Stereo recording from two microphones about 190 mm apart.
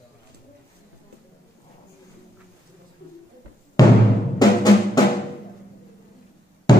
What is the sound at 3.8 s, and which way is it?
Music, 20° left (ahead or behind).